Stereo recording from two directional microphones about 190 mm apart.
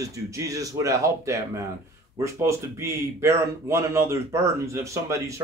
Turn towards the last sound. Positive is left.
turn(degrees=-15)  # may be behind; listen again after turning